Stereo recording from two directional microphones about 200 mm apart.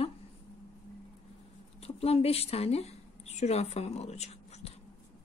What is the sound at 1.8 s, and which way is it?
A woman's voice, 30° left (ahead or behind).